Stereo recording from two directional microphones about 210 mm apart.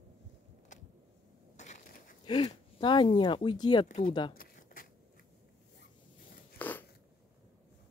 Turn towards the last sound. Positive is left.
turn(degrees=10)  # may be behind; listen again after turning